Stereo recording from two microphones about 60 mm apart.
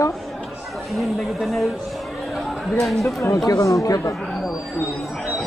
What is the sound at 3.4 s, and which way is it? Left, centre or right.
Speech, left.